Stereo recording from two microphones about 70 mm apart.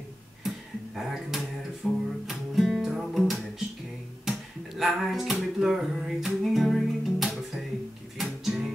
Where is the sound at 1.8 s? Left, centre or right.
Centre.